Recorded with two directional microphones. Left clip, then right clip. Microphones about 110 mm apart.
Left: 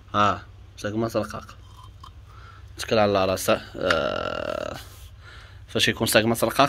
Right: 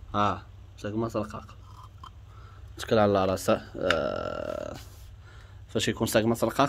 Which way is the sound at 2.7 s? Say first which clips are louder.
Left 3 dB; 45° right (ahead or behind).